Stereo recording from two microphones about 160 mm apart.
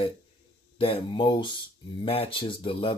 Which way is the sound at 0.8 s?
30° left (ahead or behind).